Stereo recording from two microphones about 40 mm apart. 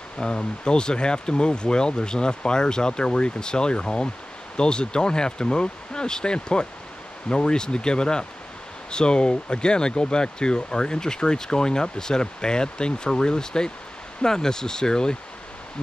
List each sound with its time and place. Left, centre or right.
0.2 s speech: left